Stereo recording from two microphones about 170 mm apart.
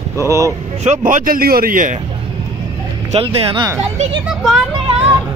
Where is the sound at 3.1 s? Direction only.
30° right (ahead or behind).